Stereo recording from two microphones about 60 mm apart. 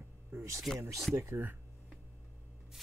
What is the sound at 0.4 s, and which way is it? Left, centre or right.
Speech, right.